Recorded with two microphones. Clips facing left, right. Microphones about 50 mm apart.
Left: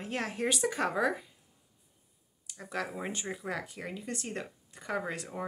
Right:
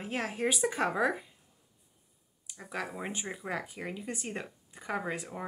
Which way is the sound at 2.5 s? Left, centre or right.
Centre.